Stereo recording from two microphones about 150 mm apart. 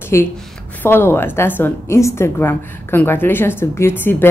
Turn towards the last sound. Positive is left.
turn(degrees=15)  # may be behind; listen again after turning